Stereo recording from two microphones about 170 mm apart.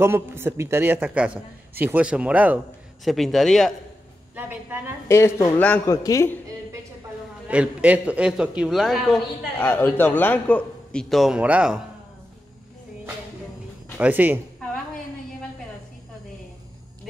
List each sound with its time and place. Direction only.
0.0 s a man's voice: 15° right (ahead or behind); by 3.7 s centre (ahead or behind)
4.4 s a woman's voice: 10° right (ahead or behind)
5.0 s a man's voice: 15° left (ahead or behind)
7.4 s a man's voice: 5° right (ahead or behind)
9.6 s a man's voice: 10° left (ahead or behind); by 11.8 s 5° right (ahead or behind)
13.9 s a man's voice: 10° right (ahead or behind)